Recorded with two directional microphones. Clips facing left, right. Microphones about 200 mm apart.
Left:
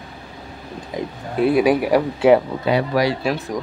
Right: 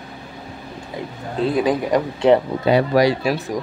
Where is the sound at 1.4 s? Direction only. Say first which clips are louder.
Left 3 dB; 15° left (ahead or behind).